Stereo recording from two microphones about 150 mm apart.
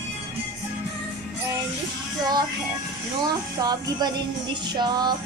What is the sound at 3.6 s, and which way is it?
Music, 25° right (ahead or behind).